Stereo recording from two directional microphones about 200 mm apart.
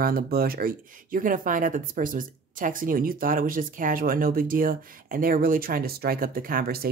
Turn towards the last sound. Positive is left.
turn(degrees=-50)  # may be behind; listen again after turning